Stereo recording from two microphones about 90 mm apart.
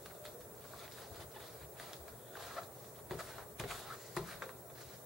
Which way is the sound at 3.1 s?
5° right (ahead or behind).